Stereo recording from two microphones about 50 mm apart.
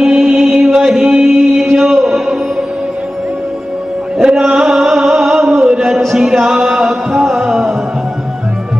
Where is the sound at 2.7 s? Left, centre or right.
Right.